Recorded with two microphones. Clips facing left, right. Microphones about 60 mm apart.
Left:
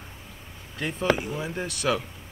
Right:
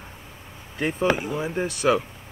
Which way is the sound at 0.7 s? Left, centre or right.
Right.